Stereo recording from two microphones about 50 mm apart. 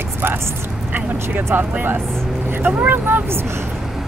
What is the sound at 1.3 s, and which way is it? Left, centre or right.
Speech, right.